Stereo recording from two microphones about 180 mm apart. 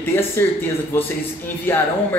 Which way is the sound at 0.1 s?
10° left (ahead or behind).